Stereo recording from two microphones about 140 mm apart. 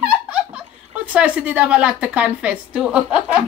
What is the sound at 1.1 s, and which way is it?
A woman's voice, 10° right (ahead or behind).